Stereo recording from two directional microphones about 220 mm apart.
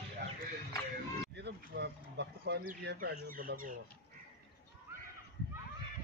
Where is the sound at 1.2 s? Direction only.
50° right (ahead or behind).